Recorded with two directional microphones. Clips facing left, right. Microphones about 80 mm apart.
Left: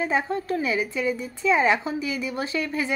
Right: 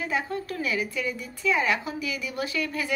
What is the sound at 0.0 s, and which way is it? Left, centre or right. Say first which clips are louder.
A woman's voice: left 4 dB; left.